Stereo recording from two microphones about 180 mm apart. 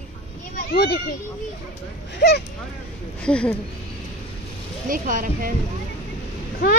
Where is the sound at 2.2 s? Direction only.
65° left (ahead or behind).